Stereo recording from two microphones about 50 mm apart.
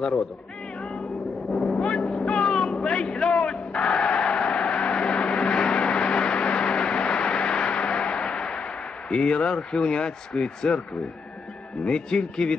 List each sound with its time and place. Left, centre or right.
1.7 s vehicle: centre
2.7 s a sound: left
4.2 s a sound: centre
4.7 s vehicle: left
9.1 s speech: centre
11.8 s speech: centre